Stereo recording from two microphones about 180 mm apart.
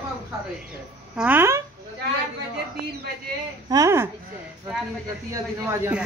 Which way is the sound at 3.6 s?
20° right (ahead or behind).